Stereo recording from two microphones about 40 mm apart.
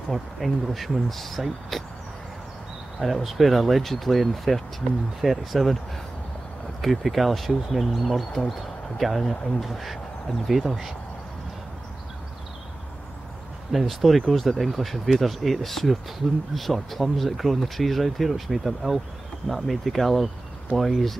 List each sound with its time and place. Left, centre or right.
0.1 s speech: centre
3.0 s speech: centre
6.8 s speech: centre
13.7 s speech: centre